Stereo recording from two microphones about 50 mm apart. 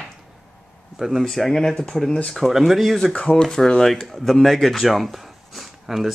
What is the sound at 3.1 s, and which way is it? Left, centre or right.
Speech, centre.